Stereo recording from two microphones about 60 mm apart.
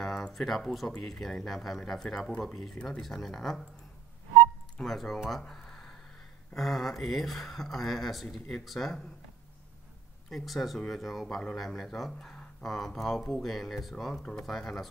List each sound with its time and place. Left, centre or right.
0.0 s speech: centre
4.7 s speech: centre
5.4 s a sound: centre
6.5 s speech: centre
10.3 s speech: centre